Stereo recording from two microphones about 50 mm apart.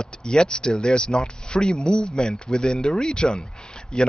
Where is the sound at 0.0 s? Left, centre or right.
Centre.